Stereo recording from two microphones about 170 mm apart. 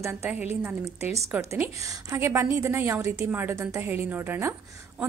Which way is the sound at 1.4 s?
15° right (ahead or behind).